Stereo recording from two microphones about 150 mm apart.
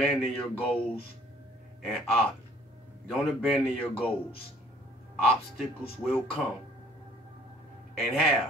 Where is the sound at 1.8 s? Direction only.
Centre (ahead or behind).